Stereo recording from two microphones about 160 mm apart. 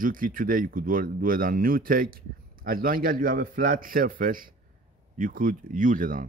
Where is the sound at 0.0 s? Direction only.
60° right (ahead or behind).